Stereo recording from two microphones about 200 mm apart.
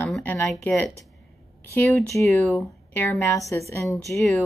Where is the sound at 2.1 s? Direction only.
15° left (ahead or behind).